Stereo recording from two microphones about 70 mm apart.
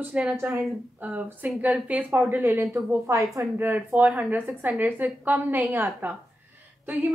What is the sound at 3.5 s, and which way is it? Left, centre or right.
Speech, right.